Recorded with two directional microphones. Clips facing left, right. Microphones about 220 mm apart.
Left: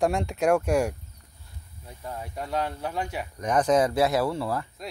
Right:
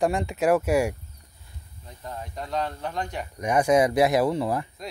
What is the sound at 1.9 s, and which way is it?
Speech, 10° left (ahead or behind).